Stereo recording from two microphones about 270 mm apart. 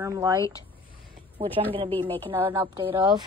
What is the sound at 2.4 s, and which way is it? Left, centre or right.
Speech, centre.